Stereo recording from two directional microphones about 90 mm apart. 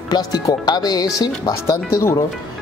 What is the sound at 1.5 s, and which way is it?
Speech, 35° left (ahead or behind).